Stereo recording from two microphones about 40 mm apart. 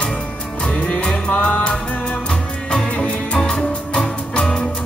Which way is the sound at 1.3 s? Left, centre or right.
Left.